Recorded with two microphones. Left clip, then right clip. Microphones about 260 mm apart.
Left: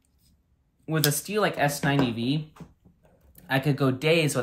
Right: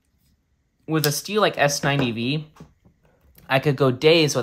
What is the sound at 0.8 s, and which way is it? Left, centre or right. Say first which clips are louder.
Speech: right 4 dB; centre.